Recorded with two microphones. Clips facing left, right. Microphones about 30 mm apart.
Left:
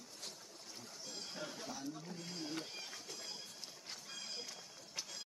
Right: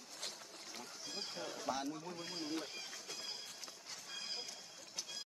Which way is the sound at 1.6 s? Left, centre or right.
Right.